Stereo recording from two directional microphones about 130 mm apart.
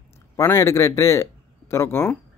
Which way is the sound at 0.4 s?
20° left (ahead or behind).